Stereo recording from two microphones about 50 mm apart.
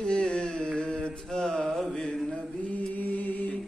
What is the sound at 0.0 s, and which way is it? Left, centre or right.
Mantra, centre.